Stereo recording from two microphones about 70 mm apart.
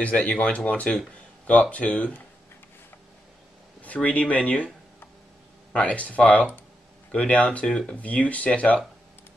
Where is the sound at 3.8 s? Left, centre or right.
Left.